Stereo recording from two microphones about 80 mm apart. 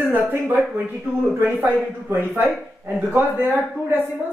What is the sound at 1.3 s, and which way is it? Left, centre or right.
A man's voice, right.